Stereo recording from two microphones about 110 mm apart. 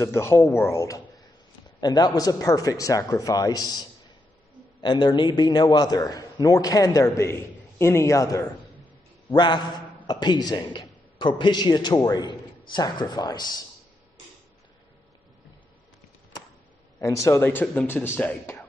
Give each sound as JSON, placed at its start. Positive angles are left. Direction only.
{"t": 0.0, "sound": "a man's voice", "side_deg": 25}
{"t": 4.8, "sound": "a man's voice", "side_deg": 45}
{"t": 9.3, "sound": "a man's voice", "side_deg": 45}
{"t": 17.0, "sound": "speech", "side_deg": 25}